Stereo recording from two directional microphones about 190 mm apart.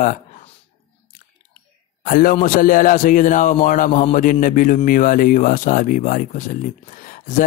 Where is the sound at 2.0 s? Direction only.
45° left (ahead or behind).